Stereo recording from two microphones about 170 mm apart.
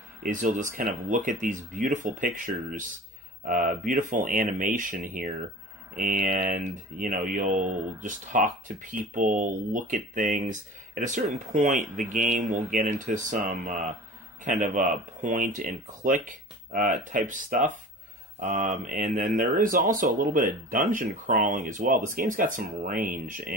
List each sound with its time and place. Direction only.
0.2 s speech: 50° right (ahead or behind)